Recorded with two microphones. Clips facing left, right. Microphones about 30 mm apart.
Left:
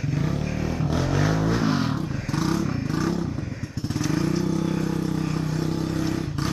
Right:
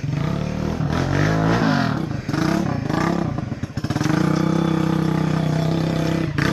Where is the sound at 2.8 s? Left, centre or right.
Right.